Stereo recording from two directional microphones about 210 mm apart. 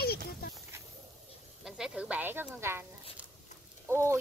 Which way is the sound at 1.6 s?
5° right (ahead or behind).